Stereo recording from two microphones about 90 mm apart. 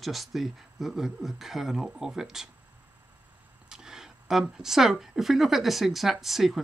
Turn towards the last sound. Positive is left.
turn(degrees=-5)  # may be behind; listen again after turning